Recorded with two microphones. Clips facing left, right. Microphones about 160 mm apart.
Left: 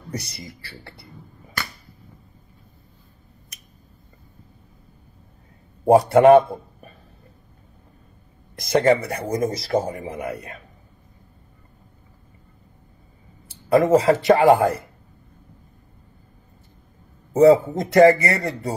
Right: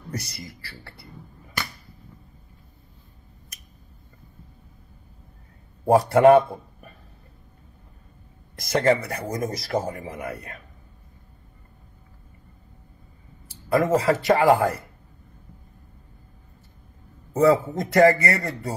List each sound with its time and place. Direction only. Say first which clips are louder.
0.1 s speech: left 2 dB; 20° left (ahead or behind)
5.9 s a man's voice: left 3 dB; 20° left (ahead or behind)
8.5 s speech: left 3 dB; 20° left (ahead or behind)
13.7 s speech: left 4 dB; 20° left (ahead or behind)
17.3 s speech: left 5 dB; 25° left (ahead or behind)